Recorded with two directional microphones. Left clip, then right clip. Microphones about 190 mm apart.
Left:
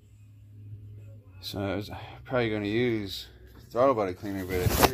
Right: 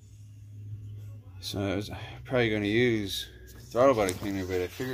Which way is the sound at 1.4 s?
Centre (ahead or behind).